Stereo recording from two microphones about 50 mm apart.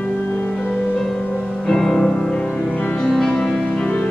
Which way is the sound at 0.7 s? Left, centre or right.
Centre.